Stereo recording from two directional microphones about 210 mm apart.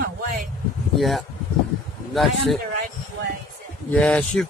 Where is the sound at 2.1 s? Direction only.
Centre (ahead or behind).